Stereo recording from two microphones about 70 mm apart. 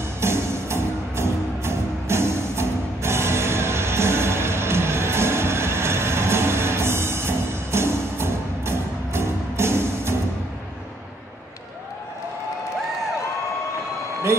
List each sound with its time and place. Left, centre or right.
0.2 s music: right